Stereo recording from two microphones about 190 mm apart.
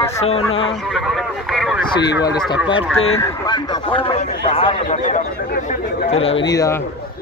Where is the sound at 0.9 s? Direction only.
Centre (ahead or behind).